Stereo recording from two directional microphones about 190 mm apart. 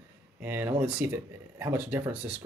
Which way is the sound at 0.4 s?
10° right (ahead or behind).